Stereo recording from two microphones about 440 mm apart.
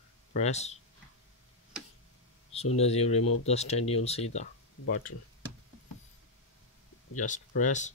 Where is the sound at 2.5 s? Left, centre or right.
Centre.